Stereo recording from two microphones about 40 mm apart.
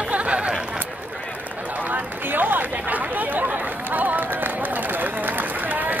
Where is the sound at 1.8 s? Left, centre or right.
Right.